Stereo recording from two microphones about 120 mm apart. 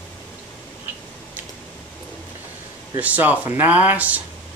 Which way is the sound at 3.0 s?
15° right (ahead or behind).